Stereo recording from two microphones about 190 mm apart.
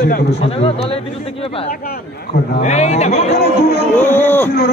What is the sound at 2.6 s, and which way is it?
Speech, 35° left (ahead or behind).